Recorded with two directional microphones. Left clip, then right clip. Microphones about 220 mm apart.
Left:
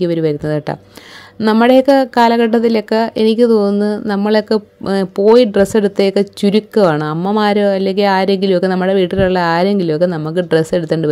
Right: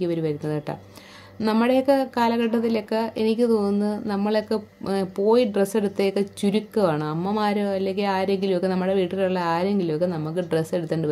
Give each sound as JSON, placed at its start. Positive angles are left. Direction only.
{"t": 0.0, "sound": "speech", "side_deg": 35}